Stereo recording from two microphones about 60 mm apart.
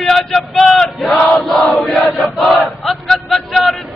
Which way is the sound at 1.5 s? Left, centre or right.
Centre.